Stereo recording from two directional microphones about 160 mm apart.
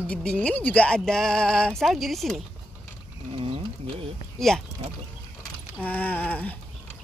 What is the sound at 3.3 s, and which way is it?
Mechanisms, 35° right (ahead or behind).